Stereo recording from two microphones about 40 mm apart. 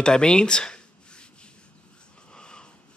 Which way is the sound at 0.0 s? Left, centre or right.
Left.